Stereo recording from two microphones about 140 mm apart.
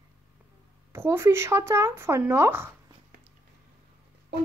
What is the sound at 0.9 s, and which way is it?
Speech, 15° right (ahead or behind).